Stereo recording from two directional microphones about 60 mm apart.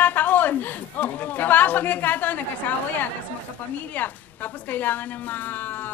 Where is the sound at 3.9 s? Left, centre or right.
Left.